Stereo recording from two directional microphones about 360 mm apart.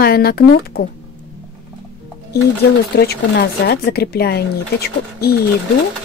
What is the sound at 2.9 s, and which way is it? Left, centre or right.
Speech, left.